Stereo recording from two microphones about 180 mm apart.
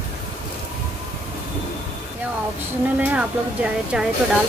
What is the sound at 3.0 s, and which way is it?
Speech, 5° right (ahead or behind).